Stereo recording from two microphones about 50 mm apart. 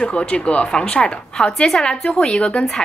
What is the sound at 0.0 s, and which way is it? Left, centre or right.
A woman's voice, left.